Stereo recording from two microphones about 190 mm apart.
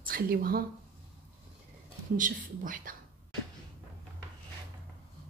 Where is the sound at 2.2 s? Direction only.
45° right (ahead or behind).